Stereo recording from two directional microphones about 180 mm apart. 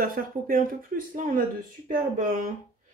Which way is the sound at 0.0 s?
50° right (ahead or behind).